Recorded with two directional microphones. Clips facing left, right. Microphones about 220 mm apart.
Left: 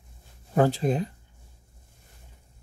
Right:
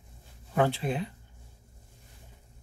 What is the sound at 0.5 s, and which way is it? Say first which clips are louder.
Speech: left 5 dB; 40° left (ahead or behind).